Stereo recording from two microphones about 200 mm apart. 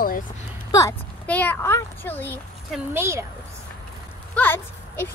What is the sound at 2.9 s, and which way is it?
Speech, 15° right (ahead or behind).